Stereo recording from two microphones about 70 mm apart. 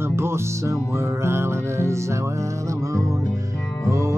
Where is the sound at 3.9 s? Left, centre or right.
Right.